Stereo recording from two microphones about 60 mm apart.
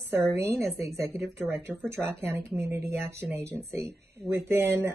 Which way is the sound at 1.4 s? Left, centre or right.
Right.